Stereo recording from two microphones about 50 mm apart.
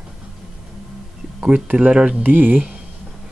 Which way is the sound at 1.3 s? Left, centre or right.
Right.